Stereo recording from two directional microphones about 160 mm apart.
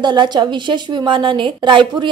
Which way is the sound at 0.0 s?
30° right (ahead or behind).